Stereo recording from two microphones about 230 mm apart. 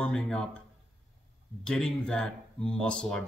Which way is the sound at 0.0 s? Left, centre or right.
Centre.